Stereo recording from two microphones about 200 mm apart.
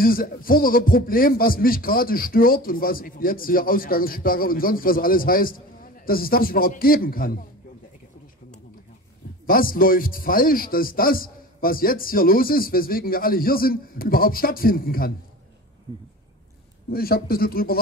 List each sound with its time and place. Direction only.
0.0 s speech: 45° left (ahead or behind)
9.5 s speech: 45° left (ahead or behind)
16.9 s speech: 50° left (ahead or behind)